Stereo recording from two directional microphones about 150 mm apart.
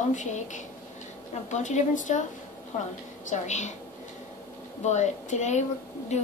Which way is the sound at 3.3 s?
50° left (ahead or behind).